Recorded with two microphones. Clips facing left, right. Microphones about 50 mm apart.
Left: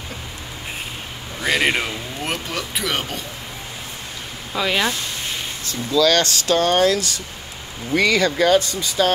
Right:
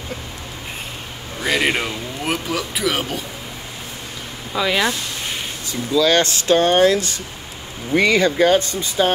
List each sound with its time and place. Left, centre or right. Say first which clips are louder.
1.4 s speech: even; centre
4.5 s speech: right 2 dB; centre
5.7 s speech: right 1 dB; right